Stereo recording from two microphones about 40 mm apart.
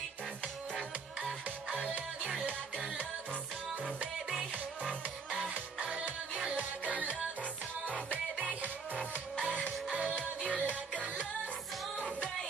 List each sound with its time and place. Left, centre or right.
4.8 s music: right
6.9 s music: right
9.9 s music: right